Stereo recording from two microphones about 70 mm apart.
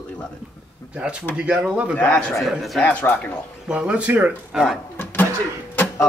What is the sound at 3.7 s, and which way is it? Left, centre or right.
Speech, centre.